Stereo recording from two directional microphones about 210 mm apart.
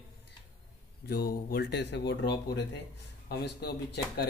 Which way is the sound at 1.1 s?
45° left (ahead or behind).